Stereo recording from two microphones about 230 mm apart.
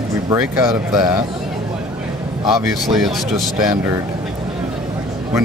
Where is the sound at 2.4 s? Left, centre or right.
Centre.